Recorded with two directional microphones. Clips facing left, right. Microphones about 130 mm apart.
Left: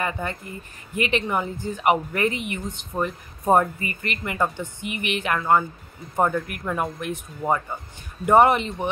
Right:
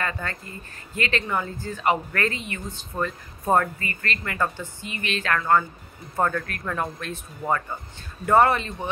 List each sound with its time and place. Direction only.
0.0 s speech: 15° left (ahead or behind)